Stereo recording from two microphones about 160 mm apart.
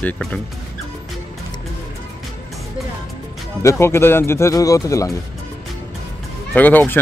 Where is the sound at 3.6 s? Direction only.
15° left (ahead or behind).